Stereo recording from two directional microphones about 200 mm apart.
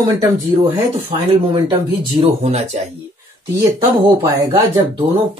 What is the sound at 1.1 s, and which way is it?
Speech, 25° right (ahead or behind).